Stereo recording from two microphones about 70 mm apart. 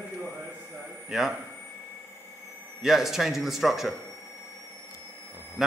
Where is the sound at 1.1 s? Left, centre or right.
Centre.